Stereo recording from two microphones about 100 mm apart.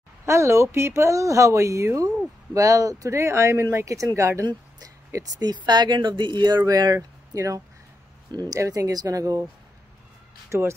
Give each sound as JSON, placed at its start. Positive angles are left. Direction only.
{"t": 0.2, "sound": "speech", "side_deg": -30}
{"t": 10.5, "sound": "speech", "side_deg": -30}